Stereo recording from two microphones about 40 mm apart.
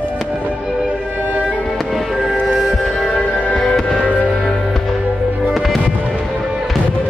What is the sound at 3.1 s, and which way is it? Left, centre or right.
Music, centre.